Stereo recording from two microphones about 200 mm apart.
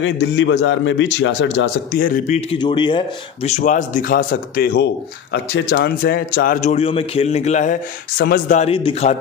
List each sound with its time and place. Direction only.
0.0 s a man's voice: 60° left (ahead or behind)
2.0 s a man's voice: 40° left (ahead or behind)
2.6 s a man's voice: 25° left (ahead or behind); by 8.5 s 45° left (ahead or behind)
8.5 s a man's voice: 30° left (ahead or behind)